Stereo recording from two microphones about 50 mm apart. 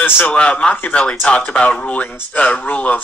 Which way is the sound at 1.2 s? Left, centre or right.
Left.